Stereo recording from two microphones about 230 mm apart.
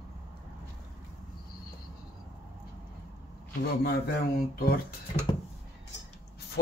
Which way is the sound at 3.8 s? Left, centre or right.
Left.